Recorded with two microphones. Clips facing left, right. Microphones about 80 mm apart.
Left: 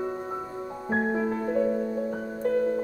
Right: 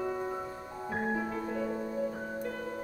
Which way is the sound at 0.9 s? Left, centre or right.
Left.